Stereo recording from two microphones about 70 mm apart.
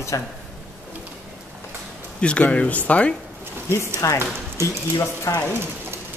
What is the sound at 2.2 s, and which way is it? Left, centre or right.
Speech, centre.